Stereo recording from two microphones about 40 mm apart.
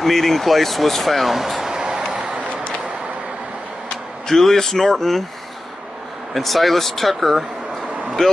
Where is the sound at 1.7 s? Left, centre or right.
Centre.